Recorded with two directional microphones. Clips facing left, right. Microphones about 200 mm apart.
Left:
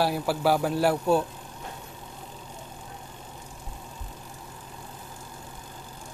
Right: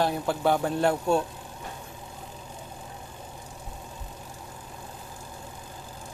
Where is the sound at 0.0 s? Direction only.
5° left (ahead or behind).